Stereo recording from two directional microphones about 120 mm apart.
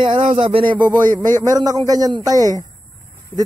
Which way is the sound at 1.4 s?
30° right (ahead or behind).